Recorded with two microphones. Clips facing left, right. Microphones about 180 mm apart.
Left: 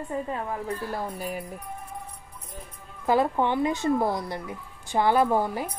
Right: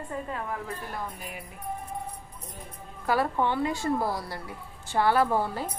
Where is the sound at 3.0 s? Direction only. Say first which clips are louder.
Left 3 dB; 20° left (ahead or behind).